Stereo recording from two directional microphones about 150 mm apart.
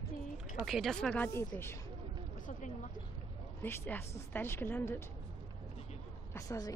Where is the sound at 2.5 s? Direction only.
60° left (ahead or behind).